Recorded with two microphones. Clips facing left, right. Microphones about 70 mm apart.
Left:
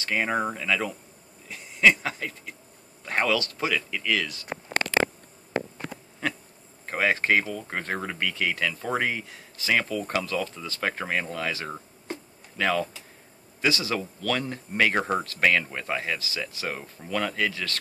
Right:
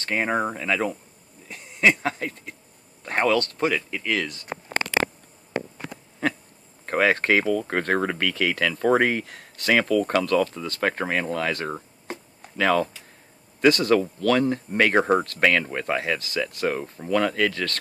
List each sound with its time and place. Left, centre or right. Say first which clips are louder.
0.0 s speech: right 2 dB; right
6.9 s speech: right 3 dB; right
15.0 s speech: right 6 dB; right
15.2 s speech: right 2 dB; right